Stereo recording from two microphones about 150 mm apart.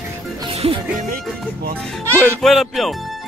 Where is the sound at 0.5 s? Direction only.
40° right (ahead or behind).